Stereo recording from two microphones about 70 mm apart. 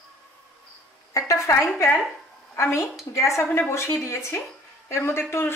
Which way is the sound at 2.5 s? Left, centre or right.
Left.